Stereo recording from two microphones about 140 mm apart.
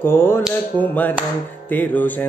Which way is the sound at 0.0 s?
15° left (ahead or behind).